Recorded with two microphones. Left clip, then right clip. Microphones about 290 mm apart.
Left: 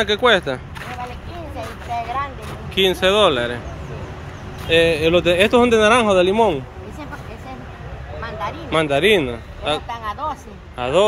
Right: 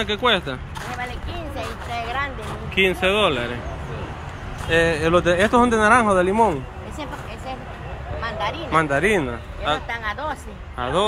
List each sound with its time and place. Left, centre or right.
0.0 s speech: centre
2.7 s speech: centre
4.6 s speech: centre
8.2 s a sound: right
8.7 s speech: centre
9.8 s a sound: right
10.8 s speech: centre